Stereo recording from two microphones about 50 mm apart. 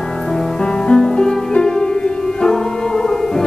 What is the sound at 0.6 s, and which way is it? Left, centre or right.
Music, centre.